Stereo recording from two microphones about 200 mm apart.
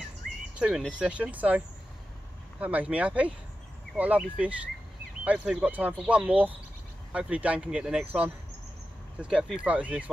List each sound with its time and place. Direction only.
0.6 s speech: 5° right (ahead or behind)
2.6 s speech: 5° right (ahead or behind)